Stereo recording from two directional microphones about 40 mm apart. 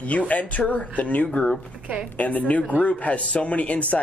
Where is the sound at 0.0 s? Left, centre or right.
Left.